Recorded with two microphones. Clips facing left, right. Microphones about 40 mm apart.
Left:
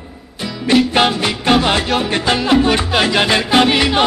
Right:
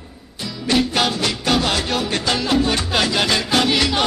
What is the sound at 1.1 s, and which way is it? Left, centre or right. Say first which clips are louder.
Music: left 5 dB; left.